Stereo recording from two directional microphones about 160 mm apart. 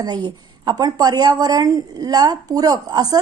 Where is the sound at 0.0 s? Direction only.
25° right (ahead or behind).